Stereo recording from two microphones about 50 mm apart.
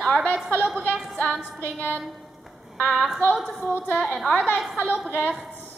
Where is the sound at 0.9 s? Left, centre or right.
Centre.